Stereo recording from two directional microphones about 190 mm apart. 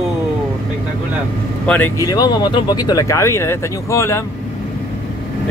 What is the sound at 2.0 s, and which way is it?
Speech, 20° left (ahead or behind).